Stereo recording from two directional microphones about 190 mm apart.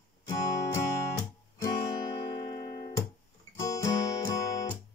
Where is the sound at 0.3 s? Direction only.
15° left (ahead or behind).